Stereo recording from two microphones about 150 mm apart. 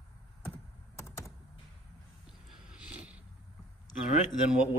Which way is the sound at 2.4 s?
5° right (ahead or behind).